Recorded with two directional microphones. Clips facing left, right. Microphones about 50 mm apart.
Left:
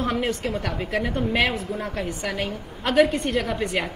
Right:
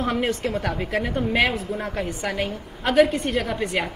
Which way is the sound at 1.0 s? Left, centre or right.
Centre.